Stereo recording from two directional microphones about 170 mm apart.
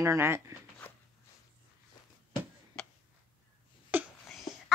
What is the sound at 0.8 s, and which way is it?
Walk, 10° left (ahead or behind).